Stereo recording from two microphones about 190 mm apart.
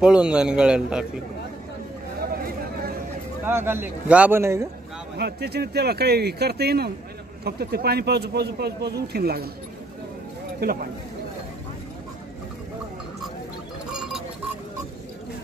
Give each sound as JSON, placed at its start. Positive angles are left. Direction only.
{"t": 0.0, "sound": "a man's voice", "side_deg": -5}
{"t": 3.4, "sound": "speech", "side_deg": -10}
{"t": 5.1, "sound": "speech", "side_deg": -60}
{"t": 10.6, "sound": "speech", "side_deg": -50}
{"t": 13.9, "sound": "sheep", "side_deg": 0}